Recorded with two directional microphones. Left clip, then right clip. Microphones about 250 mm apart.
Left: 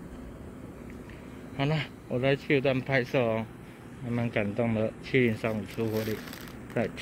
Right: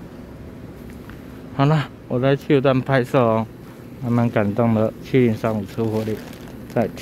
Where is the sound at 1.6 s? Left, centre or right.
Centre.